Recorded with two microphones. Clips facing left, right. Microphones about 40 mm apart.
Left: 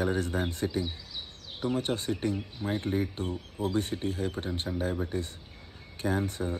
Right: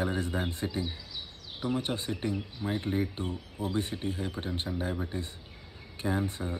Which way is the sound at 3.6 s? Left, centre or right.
Right.